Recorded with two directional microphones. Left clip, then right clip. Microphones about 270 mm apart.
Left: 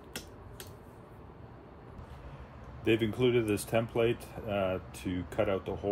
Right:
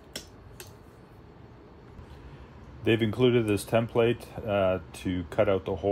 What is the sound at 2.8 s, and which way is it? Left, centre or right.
Speech, right.